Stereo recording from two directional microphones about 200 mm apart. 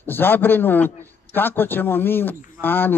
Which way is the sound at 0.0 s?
10° left (ahead or behind).